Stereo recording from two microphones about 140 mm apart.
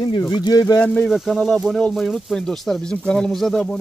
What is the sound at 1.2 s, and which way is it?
Speech, centre (ahead or behind).